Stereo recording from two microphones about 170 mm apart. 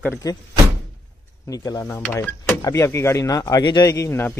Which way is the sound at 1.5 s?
20° left (ahead or behind).